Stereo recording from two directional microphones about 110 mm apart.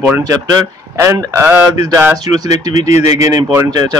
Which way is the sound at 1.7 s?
35° right (ahead or behind).